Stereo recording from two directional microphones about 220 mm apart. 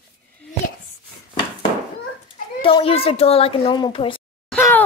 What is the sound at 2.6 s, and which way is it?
Speech, 25° left (ahead or behind).